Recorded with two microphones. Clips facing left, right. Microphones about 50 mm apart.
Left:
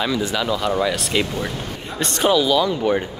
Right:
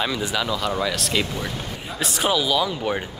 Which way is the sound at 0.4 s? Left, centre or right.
Centre.